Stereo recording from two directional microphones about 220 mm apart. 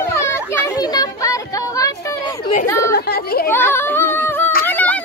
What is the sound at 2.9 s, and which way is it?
Speech, 45° left (ahead or behind).